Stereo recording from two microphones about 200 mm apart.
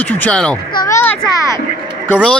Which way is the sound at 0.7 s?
20° left (ahead or behind).